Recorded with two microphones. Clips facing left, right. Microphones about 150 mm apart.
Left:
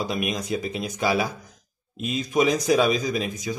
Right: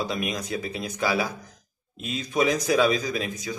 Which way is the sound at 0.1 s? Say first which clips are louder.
Left 2 dB; 15° left (ahead or behind).